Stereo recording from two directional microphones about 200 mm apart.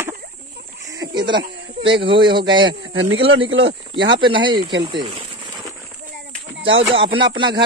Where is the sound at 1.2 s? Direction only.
25° right (ahead or behind).